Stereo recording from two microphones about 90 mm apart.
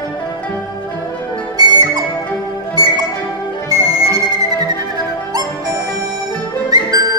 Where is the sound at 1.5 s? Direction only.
50° right (ahead or behind).